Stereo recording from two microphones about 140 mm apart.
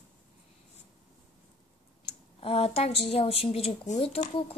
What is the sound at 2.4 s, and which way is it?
Speech, 45° left (ahead or behind).